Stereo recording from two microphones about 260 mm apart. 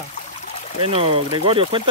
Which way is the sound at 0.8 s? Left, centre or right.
Right.